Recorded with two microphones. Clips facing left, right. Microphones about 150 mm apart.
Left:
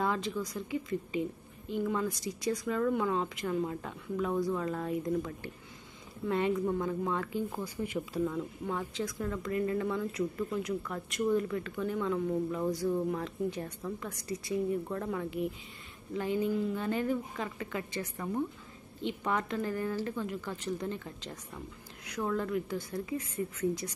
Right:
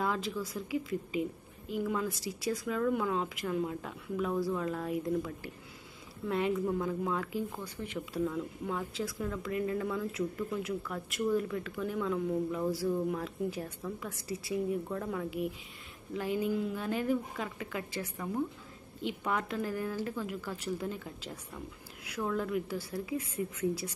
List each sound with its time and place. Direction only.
0.0 s speech: centre (ahead or behind)
7.6 s a woman's voice: 10° left (ahead or behind); by 23.9 s 5° right (ahead or behind)